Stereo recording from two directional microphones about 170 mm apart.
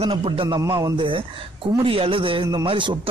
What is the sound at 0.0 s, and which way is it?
Speech, 35° right (ahead or behind).